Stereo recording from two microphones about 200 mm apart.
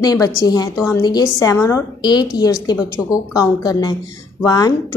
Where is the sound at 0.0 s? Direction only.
20° left (ahead or behind).